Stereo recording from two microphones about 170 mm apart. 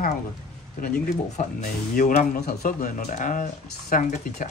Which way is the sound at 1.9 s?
50° left (ahead or behind).